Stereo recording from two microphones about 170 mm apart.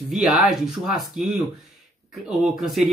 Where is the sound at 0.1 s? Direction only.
Centre (ahead or behind).